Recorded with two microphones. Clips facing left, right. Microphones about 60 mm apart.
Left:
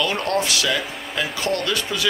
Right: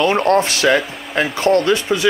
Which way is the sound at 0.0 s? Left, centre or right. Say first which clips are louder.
Right 8 dB; right.